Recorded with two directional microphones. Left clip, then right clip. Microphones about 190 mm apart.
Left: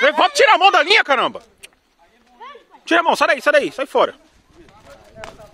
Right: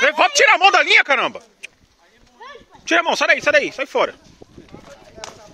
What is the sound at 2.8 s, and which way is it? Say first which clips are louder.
Speech: left 2 dB; 30° left (ahead or behind).